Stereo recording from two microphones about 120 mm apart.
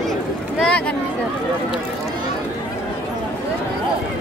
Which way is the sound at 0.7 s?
10° left (ahead or behind).